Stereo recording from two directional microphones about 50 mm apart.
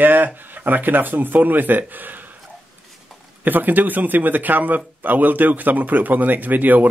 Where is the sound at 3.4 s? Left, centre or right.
Right.